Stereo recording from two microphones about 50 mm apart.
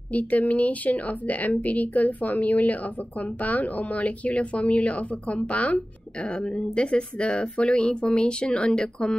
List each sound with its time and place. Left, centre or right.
0.1 s a woman's voice: left; by 9.1 s centre